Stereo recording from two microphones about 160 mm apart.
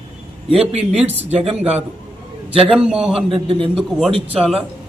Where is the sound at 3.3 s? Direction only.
35° right (ahead or behind).